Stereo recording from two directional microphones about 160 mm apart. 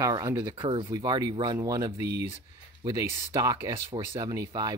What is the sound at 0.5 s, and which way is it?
Speech, 30° right (ahead or behind).